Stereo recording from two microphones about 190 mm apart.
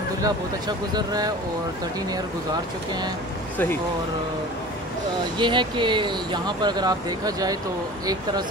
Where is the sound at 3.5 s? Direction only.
10° left (ahead or behind).